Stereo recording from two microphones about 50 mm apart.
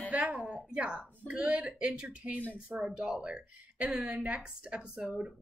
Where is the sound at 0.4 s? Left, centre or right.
Centre.